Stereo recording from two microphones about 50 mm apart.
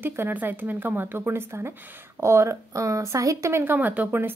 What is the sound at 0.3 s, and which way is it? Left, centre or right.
Speech, right.